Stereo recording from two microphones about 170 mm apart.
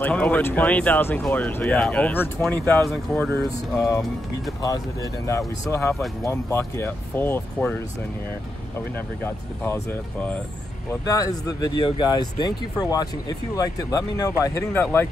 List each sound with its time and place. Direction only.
0.0 s speech: 10° left (ahead or behind)
3.7 s speech: 20° left (ahead or behind)
10.9 s speech: 20° left (ahead or behind)